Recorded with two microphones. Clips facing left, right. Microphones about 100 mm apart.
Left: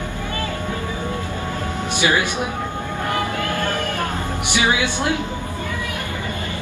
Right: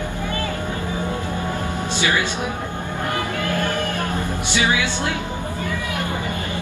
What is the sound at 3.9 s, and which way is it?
Music, 20° left (ahead or behind).